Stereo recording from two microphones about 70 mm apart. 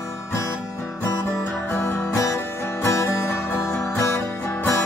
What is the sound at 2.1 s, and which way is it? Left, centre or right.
Music, left.